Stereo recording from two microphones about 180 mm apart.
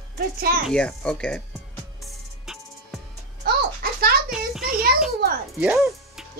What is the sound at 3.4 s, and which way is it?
Music, 60° right (ahead or behind).